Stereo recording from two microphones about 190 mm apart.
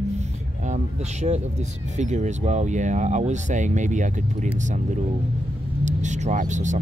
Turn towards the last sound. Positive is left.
turn(degrees=-40)  # may be behind; listen again after turning